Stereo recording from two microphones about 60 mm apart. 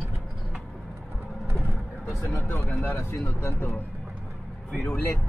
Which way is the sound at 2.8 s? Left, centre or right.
Left.